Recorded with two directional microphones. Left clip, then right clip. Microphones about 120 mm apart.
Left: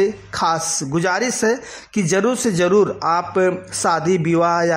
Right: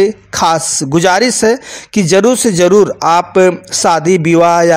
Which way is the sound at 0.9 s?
30° right (ahead or behind).